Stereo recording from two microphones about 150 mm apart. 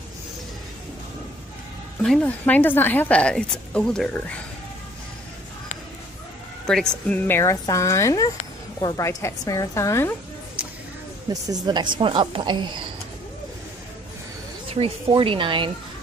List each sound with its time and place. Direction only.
2.0 s a woman's voice: 10° left (ahead or behind)
6.7 s speech: 5° left (ahead or behind)
11.4 s a woman's voice: 30° right (ahead or behind)
14.7 s a woman's voice: 40° right (ahead or behind)